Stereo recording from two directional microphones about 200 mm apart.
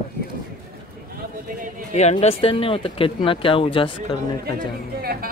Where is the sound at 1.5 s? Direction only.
45° right (ahead or behind).